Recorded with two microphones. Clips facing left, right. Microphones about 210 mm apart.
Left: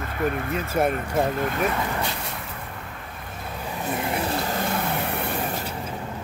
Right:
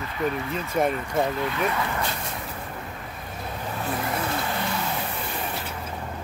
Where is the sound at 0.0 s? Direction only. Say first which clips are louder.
Left 1 dB; 50° left (ahead or behind).